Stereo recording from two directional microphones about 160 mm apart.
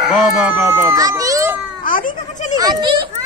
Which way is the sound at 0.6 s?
15° right (ahead or behind).